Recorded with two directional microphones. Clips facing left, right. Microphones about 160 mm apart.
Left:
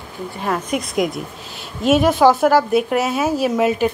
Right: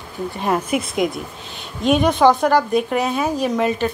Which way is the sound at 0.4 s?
20° right (ahead or behind).